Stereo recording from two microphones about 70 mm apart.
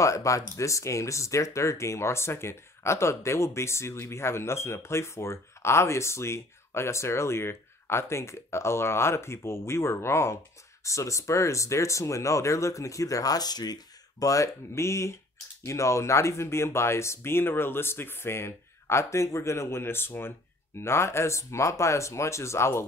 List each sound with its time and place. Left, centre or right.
0.0 s speech: left
14.2 s speech: left